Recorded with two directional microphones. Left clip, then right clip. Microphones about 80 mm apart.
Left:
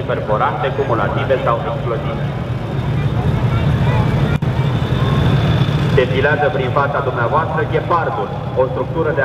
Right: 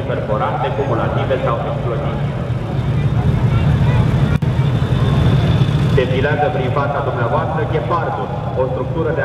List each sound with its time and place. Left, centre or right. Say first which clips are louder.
1.3 s speech: left 3 dB; left
3.6 s vehicle: left 2 dB; left
5.1 s a man's voice: left 1 dB; left